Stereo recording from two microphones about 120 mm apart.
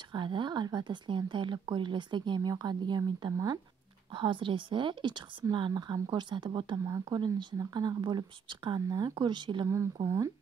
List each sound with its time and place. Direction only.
0.1 s speech: 40° right (ahead or behind)
6.8 s speech: 30° right (ahead or behind)
10.0 s speech: 25° right (ahead or behind)